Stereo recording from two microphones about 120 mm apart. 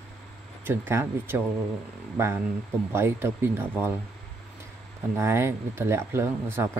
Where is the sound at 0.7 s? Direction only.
20° right (ahead or behind).